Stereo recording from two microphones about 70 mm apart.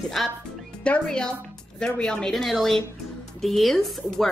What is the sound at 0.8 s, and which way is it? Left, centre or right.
Speech, centre.